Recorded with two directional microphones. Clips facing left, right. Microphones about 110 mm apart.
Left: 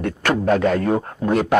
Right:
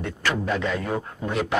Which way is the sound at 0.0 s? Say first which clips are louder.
Left 7 dB; 55° left (ahead or behind).